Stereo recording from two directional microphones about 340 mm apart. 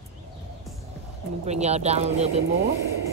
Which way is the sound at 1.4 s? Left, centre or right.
Centre.